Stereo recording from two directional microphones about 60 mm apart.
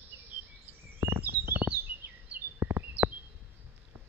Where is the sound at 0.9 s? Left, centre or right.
Right.